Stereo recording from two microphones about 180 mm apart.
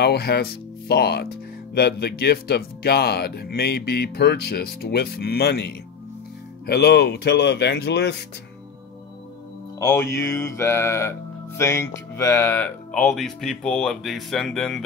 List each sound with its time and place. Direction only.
0.0 s speech: 65° left (ahead or behind)
9.8 s speech: 15° left (ahead or behind)